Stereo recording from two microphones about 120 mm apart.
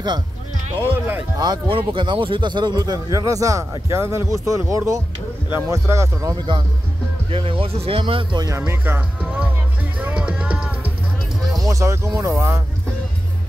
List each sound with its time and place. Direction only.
0.7 s speech: 15° right (ahead or behind)
1.4 s a man's voice: 40° right (ahead or behind); by 6.3 s 25° right (ahead or behind)
7.2 s speech: 50° right (ahead or behind)
8.5 s a man's voice: 20° right (ahead or behind)
9.9 s music: 10° right (ahead or behind)
11.5 s speech: 30° right (ahead or behind)